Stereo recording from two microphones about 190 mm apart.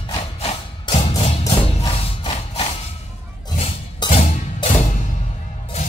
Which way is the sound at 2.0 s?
30° left (ahead or behind).